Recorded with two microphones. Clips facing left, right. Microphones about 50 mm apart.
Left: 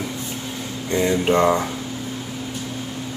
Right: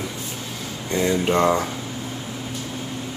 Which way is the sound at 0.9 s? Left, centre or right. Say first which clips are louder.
Left 2 dB; centre.